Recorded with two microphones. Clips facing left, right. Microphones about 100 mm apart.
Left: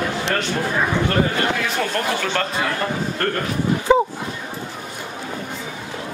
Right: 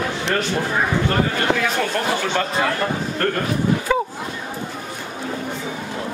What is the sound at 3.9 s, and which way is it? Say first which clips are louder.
Bow-wow: left 7 dB; 25° left (ahead or behind).